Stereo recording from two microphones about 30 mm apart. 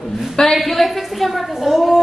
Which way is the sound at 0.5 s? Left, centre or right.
Centre.